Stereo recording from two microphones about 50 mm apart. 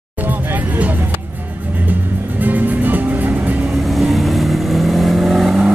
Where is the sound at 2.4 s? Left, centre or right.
Right.